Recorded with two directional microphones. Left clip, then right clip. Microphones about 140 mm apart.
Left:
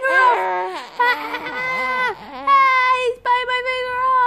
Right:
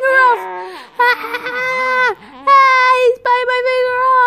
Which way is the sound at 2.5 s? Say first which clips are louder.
Right 5 dB; 40° right (ahead or behind).